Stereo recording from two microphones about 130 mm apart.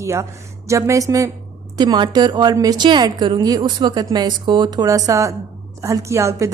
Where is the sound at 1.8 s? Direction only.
35° right (ahead or behind).